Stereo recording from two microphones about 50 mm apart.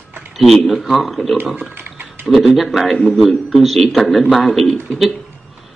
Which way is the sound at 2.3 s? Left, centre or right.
Centre.